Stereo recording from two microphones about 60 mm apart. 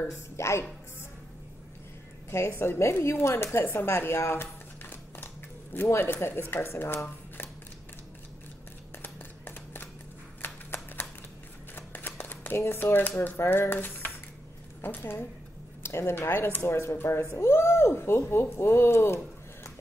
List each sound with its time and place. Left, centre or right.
0.4 s speech: left
2.3 s speech: left
3.7 s a sound: left
6.5 s speech: left
9.0 s a sound: left
10.4 s shuffling cards: left
13.4 s speech: left
15.8 s speech: left